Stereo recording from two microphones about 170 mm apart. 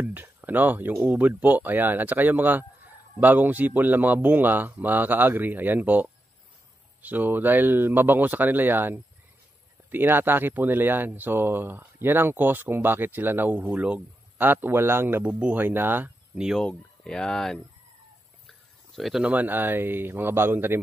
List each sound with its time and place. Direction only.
0.0 s speech: 10° right (ahead or behind)